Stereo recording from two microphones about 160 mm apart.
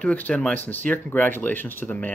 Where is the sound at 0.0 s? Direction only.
10° left (ahead or behind).